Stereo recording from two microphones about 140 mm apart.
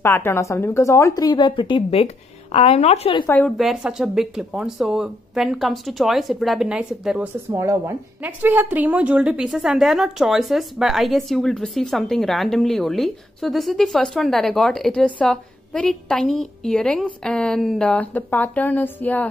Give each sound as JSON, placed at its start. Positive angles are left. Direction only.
{"t": 0.0, "sound": "a woman's voice", "side_deg": 15}
{"t": 3.4, "sound": "a woman's voice", "side_deg": 0}
{"t": 7.5, "sound": "a woman's voice", "side_deg": -20}